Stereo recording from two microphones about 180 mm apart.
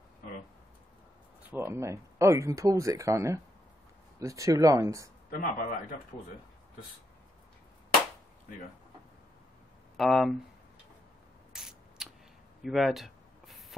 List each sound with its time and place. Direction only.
1.5 s speech: 15° right (ahead or behind)
5.3 s a man's voice: 50° left (ahead or behind)
9.9 s speech: centre (ahead or behind)
11.5 s a sound: centre (ahead or behind)